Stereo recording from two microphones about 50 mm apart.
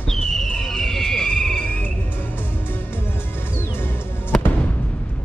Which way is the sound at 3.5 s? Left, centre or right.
Left.